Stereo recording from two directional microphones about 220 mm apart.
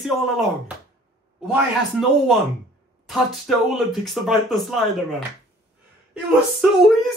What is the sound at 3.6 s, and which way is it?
Speech, centre (ahead or behind).